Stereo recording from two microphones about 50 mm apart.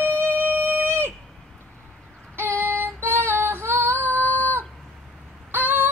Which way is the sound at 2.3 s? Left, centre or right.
Right.